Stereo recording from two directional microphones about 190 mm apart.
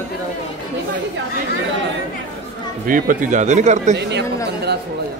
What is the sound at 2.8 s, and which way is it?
A man's voice, 45° right (ahead or behind).